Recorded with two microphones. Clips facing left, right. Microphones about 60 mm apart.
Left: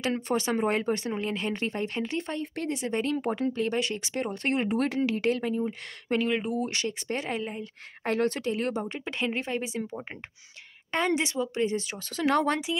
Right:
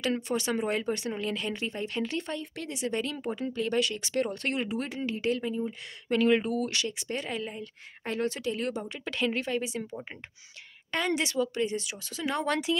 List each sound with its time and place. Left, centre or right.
0.3 s speech: left
3.6 s speech: left
4.6 s speech: left
6.1 s speech: left
12.2 s speech: left
12.7 s speech: centre